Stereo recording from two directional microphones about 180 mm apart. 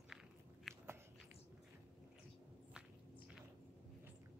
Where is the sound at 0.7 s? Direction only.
Centre (ahead or behind).